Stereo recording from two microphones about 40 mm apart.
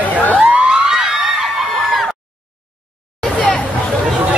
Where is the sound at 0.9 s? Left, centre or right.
Centre.